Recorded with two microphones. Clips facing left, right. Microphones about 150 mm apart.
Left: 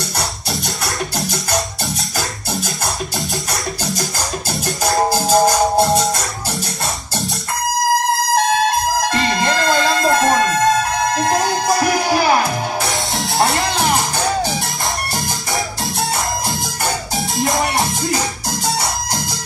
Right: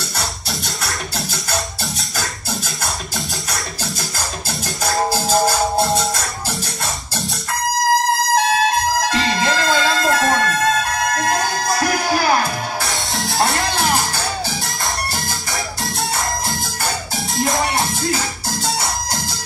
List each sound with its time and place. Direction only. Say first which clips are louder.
0.5 s music: left 3 dB; centre (ahead or behind)
4.9 s music: left 3 dB; 15° left (ahead or behind)
5.8 s music: left 3 dB; centre (ahead or behind)
10.1 s music: left 3 dB; 20° left (ahead or behind)
12.8 s music: left 3 dB; centre (ahead or behind)
13.7 s music: left 2 dB; 15° left (ahead or behind)
17.4 s music: left 1 dB; centre (ahead or behind)